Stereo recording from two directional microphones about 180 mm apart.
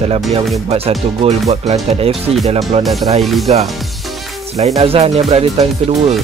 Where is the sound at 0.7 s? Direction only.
35° right (ahead or behind).